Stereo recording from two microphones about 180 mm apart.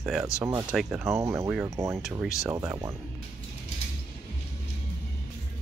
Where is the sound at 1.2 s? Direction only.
15° right (ahead or behind).